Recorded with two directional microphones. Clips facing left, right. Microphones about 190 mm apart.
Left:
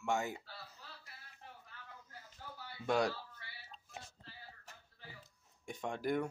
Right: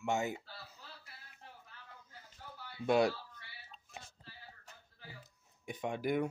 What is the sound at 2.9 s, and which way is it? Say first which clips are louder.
Speech: right 4 dB; 10° right (ahead or behind).